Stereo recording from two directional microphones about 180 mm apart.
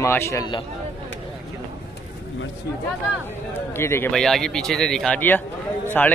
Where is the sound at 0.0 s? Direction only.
15° left (ahead or behind).